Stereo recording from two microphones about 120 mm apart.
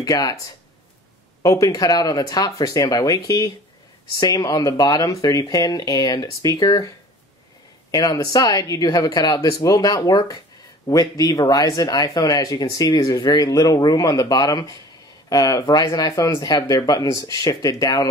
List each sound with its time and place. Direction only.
0.0 s speech: 30° left (ahead or behind)
1.4 s speech: 30° left (ahead or behind)
7.9 s speech: 30° left (ahead or behind)